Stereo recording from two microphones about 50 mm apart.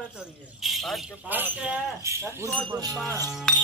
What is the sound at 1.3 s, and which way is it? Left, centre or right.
Speech, right.